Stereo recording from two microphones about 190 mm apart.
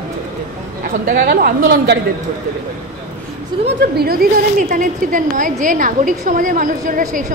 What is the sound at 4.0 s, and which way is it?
A woman's voice, 50° right (ahead or behind).